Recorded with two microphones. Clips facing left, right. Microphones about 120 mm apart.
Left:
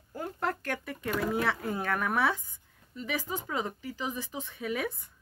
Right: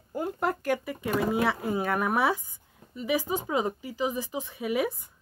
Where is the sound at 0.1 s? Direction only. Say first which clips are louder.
Right 4 dB; 15° right (ahead or behind).